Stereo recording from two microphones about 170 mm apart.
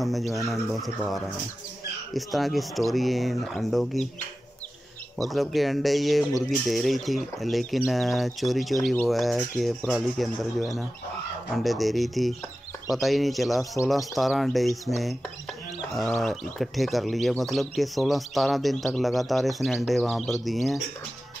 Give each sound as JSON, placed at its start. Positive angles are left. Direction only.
{"t": 0.0, "sound": "speech", "side_deg": 0}
{"t": 5.2, "sound": "speech", "side_deg": 0}
{"t": 16.0, "sound": "speech", "side_deg": 0}